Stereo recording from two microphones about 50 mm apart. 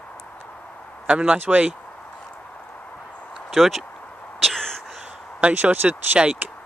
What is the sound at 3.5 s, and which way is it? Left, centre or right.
Speech, centre.